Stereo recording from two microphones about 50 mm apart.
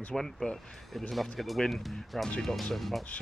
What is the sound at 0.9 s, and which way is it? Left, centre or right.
Speech, centre.